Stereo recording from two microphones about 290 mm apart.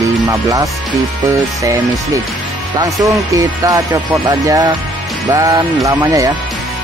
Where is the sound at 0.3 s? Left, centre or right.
Centre.